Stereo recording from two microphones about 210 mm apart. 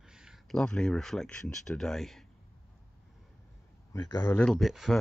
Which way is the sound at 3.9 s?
15° left (ahead or behind).